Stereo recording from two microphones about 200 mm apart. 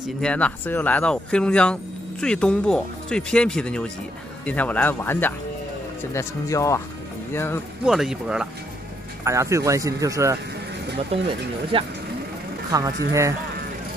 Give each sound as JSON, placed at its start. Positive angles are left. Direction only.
{"t": 0.0, "sound": "speech", "side_deg": 5}
{"t": 7.8, "sound": "speech", "side_deg": 0}
{"t": 9.2, "sound": "speech", "side_deg": -15}
{"t": 11.1, "sound": "speech", "side_deg": -25}
{"t": 12.7, "sound": "speech", "side_deg": -15}